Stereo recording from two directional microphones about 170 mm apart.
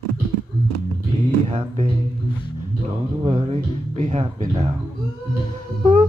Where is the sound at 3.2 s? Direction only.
35° right (ahead or behind).